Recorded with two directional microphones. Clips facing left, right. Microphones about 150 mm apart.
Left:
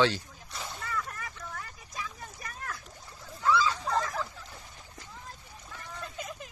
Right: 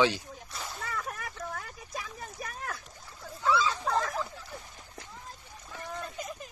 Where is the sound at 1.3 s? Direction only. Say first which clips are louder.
Right 4 dB; 60° right (ahead or behind).